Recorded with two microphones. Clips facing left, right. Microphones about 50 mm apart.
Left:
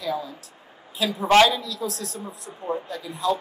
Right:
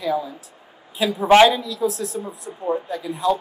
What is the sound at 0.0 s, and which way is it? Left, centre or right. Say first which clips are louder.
A woman's voice: right 5 dB; centre.